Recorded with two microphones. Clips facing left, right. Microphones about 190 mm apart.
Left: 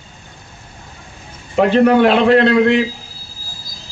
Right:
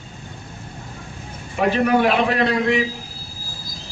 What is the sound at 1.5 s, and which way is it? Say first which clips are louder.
A man's voice: left 6 dB; 65° left (ahead or behind).